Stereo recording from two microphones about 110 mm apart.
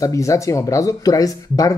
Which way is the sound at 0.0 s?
30° left (ahead or behind).